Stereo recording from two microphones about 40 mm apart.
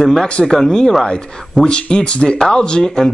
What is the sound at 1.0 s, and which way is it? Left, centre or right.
Speech, left.